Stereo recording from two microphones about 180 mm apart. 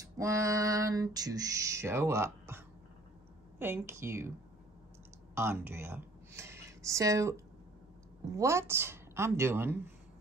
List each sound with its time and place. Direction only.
0.2 s female singing: 15° right (ahead or behind)
5.3 s speech: 15° right (ahead or behind)
8.3 s female singing: 15° right (ahead or behind)